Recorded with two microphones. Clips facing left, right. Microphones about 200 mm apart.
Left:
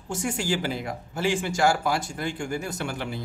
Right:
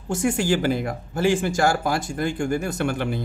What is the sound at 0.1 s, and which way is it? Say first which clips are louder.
Speech: right 6 dB; 55° right (ahead or behind).